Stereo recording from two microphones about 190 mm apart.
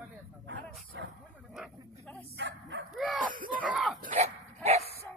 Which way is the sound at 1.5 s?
Centre (ahead or behind).